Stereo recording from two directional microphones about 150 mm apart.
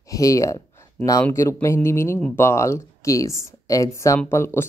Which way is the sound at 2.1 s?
5° left (ahead or behind).